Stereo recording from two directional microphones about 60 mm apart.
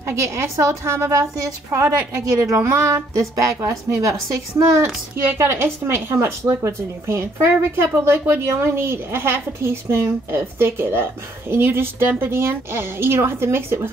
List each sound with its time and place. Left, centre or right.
0.2 s a woman's voice: right
1.7 s a woman's voice: right
5.3 s speech: right